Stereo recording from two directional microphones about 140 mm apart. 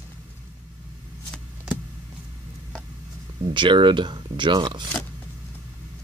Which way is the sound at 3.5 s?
35° right (ahead or behind).